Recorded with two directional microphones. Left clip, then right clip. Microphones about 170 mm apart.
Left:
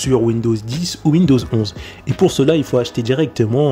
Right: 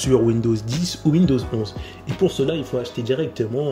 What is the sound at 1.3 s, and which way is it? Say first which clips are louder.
Speech: left 6 dB; 40° left (ahead or behind).